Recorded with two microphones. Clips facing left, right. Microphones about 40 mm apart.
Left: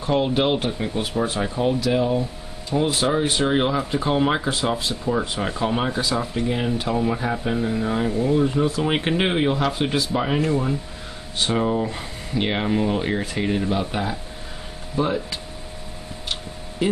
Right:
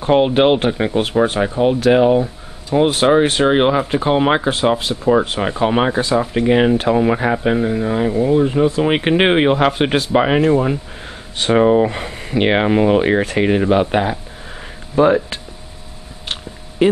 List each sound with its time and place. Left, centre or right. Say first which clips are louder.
0.0 s speech: right 8 dB; right
1.4 s speech: right 6 dB; right
1.8 s speech: right 9 dB; right
5.4 s speech: right 7 dB; right
7.6 s speech: right 5 dB; centre
9.1 s speech: right 8 dB; right
16.8 s speech: right 9 dB; right